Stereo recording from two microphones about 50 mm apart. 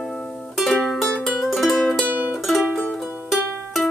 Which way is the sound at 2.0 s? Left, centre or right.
Right.